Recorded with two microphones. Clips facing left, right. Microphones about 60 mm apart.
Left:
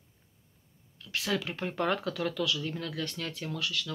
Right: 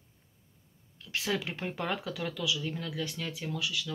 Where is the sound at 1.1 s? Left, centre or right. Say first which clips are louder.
Left 1 dB; centre.